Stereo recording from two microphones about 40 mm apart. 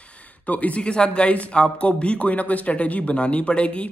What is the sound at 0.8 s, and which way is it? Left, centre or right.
Speech, left.